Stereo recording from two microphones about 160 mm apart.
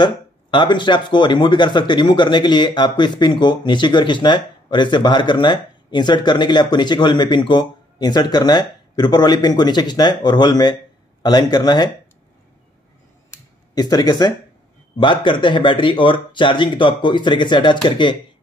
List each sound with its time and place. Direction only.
0.0 s speech: 30° left (ahead or behind)
13.3 s a sound: 25° left (ahead or behind)
15.0 s speech: 30° left (ahead or behind)